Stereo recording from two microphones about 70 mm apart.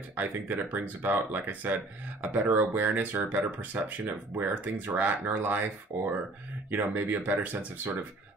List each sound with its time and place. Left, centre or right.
0.1 s speech: right